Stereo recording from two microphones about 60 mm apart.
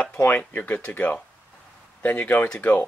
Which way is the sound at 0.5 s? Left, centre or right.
Left.